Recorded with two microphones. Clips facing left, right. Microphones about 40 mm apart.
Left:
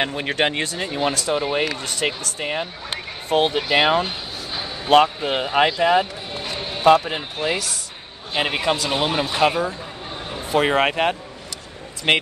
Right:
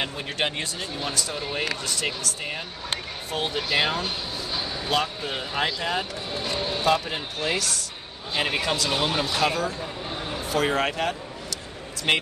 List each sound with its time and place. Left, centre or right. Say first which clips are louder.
0.0 s speech: left 6 dB; left
3.5 s speech: left 7 dB; left
6.4 s speech: left 7 dB; centre
8.3 s speech: left 4 dB; left